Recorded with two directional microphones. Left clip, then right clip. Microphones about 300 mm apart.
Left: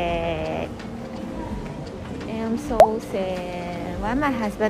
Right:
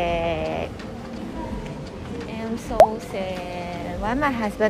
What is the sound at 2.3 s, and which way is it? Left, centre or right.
A woman's voice, centre.